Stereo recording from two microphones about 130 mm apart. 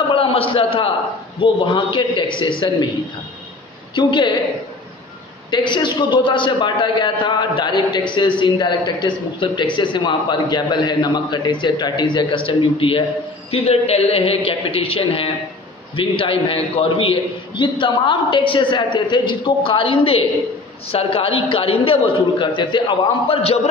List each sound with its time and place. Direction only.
0.1 s a sound: 45° left (ahead or behind)
1.4 s a man's voice: 40° left (ahead or behind)
3.9 s a man's voice: 35° left (ahead or behind)
5.5 s a man's voice: 35° left (ahead or behind)